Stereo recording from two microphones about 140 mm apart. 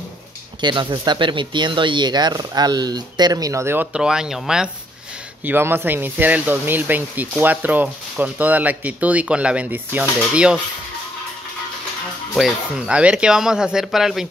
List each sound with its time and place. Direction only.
0.6 s speech: 35° right (ahead or behind); by 10.6 s 5° right (ahead or behind)
12.4 s speech: 5° right (ahead or behind)